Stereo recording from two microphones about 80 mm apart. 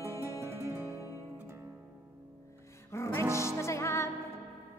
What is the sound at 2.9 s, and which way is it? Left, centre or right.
Music, left.